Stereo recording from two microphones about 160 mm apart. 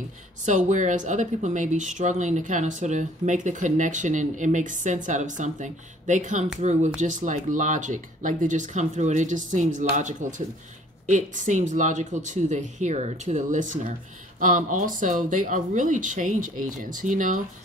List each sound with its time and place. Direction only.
0.5 s speech: 50° right (ahead or behind)